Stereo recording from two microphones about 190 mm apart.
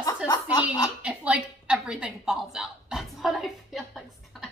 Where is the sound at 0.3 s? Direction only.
20° left (ahead or behind).